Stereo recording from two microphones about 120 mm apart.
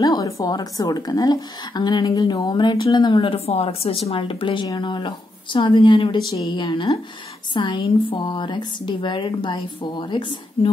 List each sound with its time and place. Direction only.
0.0 s speech: 30° left (ahead or behind)